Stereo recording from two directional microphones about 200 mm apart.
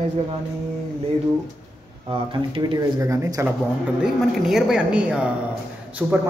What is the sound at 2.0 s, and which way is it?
Speech, 25° right (ahead or behind).